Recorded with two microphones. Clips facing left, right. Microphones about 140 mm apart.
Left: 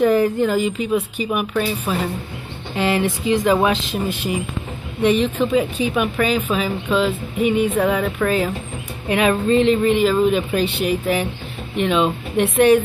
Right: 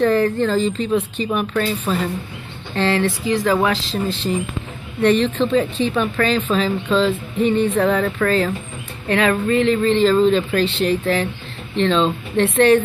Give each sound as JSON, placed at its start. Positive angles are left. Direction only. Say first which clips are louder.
{"t": 0.0, "sound": "speech", "louder": "left 1 dB", "side_deg": 10}